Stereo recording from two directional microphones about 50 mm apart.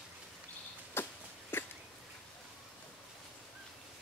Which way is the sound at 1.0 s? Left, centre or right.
Left.